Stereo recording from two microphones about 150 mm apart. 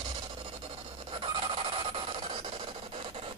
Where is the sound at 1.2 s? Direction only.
40° right (ahead or behind).